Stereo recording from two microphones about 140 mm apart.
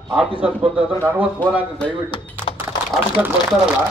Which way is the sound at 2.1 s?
35° left (ahead or behind).